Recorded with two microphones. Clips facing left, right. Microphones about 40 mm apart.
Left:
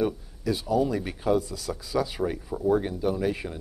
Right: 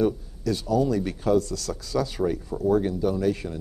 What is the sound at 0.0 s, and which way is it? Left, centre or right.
Speech, centre.